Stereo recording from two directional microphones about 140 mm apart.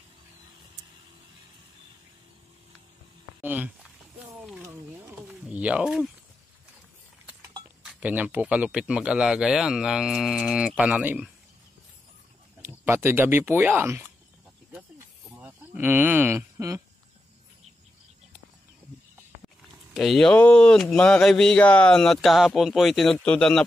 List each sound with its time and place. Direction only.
3.4 s speech: 10° right (ahead or behind)
4.4 s a sound: 15° right (ahead or behind)
8.0 s speech: 10° right (ahead or behind)
12.6 s speech: 20° right (ahead or behind)
15.3 s speech: 10° right (ahead or behind)
19.9 s speech: centre (ahead or behind)